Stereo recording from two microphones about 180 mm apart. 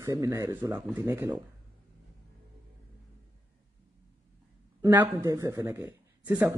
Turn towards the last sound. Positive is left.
turn(degrees=-15)  # may be behind; listen again after turning